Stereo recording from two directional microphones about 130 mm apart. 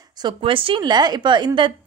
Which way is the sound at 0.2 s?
40° right (ahead or behind).